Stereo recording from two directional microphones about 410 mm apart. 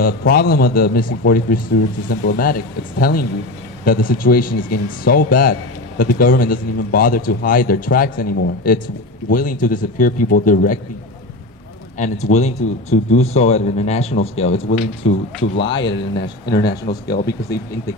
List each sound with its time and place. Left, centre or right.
0.0 s speech: left
12.0 s speech: centre
15.8 s speech: left